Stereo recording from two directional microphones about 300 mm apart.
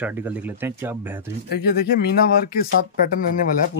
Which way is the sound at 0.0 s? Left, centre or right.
Centre.